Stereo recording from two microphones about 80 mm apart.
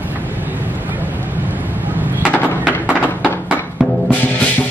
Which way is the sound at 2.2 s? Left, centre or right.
Centre.